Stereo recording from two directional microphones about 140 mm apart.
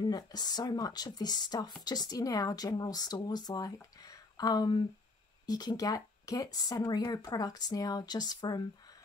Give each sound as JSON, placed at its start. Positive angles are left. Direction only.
{"t": 0.1, "sound": "speech", "side_deg": 30}